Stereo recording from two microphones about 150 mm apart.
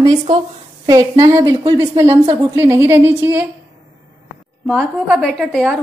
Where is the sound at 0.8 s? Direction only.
25° right (ahead or behind).